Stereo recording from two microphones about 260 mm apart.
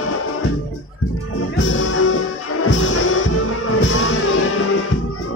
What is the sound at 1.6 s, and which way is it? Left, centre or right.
Music, left.